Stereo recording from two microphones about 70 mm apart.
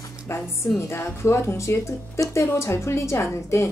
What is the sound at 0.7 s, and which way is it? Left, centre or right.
A woman's voice, left.